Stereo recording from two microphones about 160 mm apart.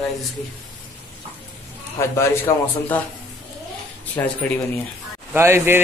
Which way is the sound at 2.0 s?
15° left (ahead or behind).